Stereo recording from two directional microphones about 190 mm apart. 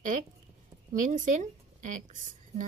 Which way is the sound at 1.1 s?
45° right (ahead or behind).